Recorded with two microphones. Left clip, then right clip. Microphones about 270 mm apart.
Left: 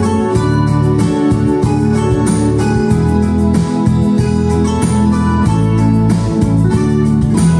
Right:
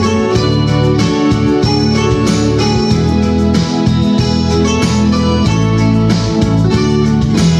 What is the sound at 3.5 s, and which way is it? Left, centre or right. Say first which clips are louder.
Music: right 1 dB; left.